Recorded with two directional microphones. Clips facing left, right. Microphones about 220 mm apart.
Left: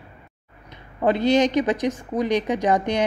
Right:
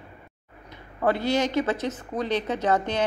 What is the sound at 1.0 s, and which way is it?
A woman's voice, 20° left (ahead or behind).